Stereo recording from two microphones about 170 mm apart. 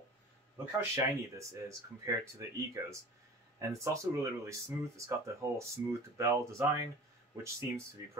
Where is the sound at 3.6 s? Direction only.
20° right (ahead or behind).